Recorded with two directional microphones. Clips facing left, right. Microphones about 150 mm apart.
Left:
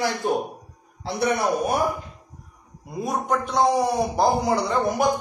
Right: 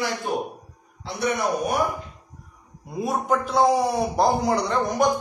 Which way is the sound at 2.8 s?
Centre (ahead or behind).